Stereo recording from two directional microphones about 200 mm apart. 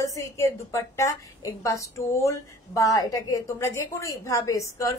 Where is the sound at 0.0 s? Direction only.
15° left (ahead or behind).